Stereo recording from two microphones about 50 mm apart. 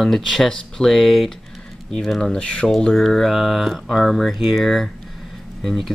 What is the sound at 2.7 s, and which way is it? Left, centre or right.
Speech, centre.